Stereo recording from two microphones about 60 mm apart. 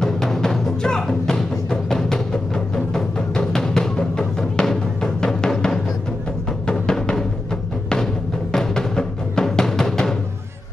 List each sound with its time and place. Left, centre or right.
0.0 s music: centre